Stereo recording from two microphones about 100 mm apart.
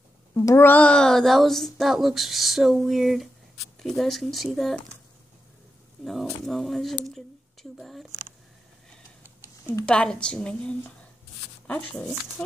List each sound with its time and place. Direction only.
0.3 s speech: 25° left (ahead or behind); by 4.8 s centre (ahead or behind)
6.4 s speech: centre (ahead or behind)
9.8 s a woman's voice: 10° left (ahead or behind)